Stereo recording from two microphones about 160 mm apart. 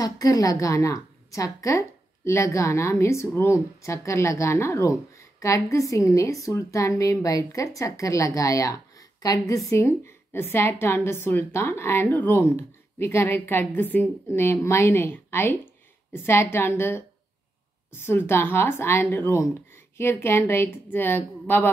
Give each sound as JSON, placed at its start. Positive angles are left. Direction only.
{"t": 0.0, "sound": "a woman's voice", "side_deg": 20}